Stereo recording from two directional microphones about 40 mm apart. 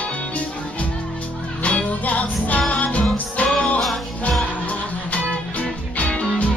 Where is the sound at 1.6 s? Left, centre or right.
Left.